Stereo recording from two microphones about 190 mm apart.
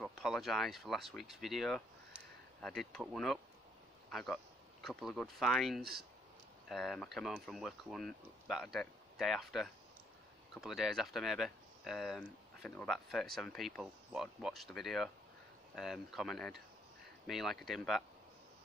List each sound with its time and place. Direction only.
0.0 s speech: centre (ahead or behind)
5.8 s speech: 55° right (ahead or behind)
6.7 s speech: centre (ahead or behind)